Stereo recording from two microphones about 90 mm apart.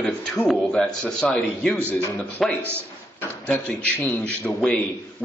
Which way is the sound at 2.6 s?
25° right (ahead or behind).